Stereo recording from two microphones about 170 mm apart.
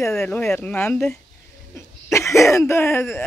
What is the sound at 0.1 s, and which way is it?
Speech, 15° left (ahead or behind).